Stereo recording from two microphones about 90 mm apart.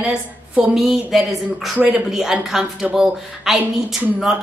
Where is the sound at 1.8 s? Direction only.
15° right (ahead or behind).